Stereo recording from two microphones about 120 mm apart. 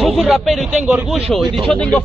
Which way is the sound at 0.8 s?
10° right (ahead or behind).